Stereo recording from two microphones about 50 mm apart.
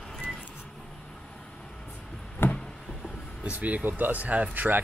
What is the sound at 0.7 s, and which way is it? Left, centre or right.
Vehicle, centre.